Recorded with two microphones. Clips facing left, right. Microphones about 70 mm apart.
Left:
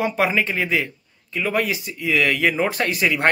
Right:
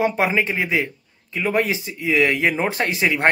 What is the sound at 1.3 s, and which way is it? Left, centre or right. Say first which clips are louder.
Speech: right 1 dB; right.